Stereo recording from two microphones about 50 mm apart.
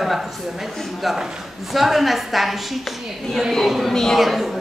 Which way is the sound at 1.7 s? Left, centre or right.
Centre.